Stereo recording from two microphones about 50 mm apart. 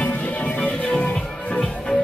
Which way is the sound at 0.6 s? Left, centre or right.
Left.